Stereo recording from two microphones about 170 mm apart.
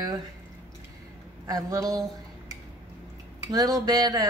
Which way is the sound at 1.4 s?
20° right (ahead or behind).